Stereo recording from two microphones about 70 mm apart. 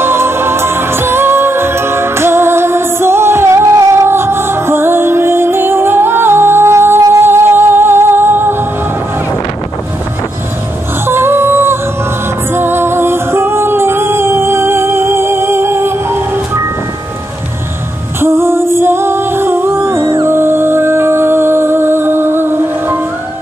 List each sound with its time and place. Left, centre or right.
0.0 s music: right
11.1 s a sound: right
12.5 s music: right
18.2 s music: right